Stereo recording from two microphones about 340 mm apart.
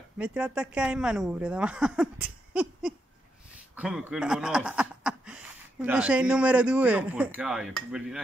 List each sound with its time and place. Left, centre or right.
0.2 s a woman's voice: centre